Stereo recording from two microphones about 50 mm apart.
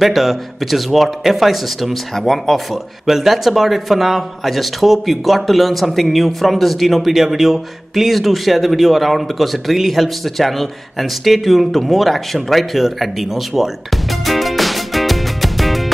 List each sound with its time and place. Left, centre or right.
0.0 s speech: centre